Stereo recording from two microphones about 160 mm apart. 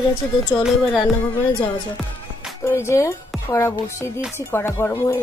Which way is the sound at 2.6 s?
15° left (ahead or behind).